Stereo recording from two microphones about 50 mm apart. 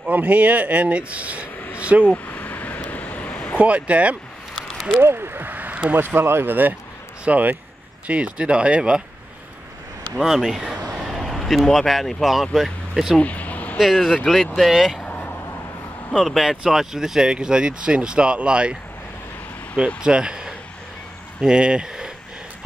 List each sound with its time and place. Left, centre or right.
0.0 s speech: right
2.0 s a sound: left
3.5 s speech: right
4.6 s a sound: centre
5.0 s speech: right
10.1 s a man's voice: centre
13.2 s vehicle: left
13.7 s speech: centre
15.0 s vehicle: left
16.1 s speech: centre; by 18.8 s right
20.0 s speech: centre